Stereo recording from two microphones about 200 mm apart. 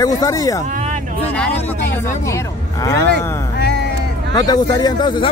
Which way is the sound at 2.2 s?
15° left (ahead or behind).